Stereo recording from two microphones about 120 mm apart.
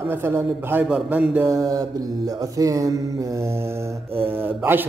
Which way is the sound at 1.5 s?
30° right (ahead or behind).